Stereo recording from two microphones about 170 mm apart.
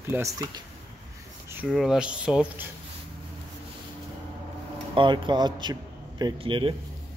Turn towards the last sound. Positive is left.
turn(degrees=-30)  # may be behind; listen again after turning